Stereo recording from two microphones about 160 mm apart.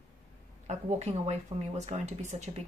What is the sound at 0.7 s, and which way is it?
Speech, 45° right (ahead or behind).